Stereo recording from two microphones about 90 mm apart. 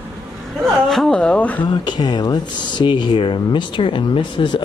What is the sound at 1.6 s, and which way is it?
Speech, 55° left (ahead or behind).